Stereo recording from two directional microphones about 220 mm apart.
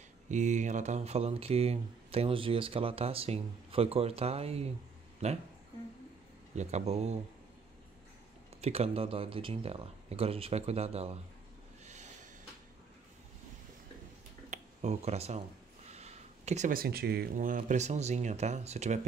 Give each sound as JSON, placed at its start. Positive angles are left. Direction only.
{"t": 0.3, "sound": "speech", "side_deg": -35}
{"t": 6.5, "sound": "speech", "side_deg": -30}
{"t": 8.5, "sound": "speech", "side_deg": -30}
{"t": 11.8, "sound": "a sound", "side_deg": -30}
{"t": 14.5, "sound": "a sound", "side_deg": -30}
{"t": 15.9, "sound": "speech", "side_deg": -30}